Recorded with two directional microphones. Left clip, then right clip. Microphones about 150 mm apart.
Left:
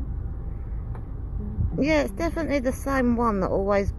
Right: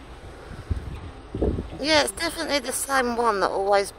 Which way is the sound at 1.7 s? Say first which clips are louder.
Right 2 dB; 65° right (ahead or behind).